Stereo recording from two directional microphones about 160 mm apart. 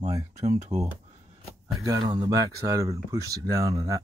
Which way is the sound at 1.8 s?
25° right (ahead or behind).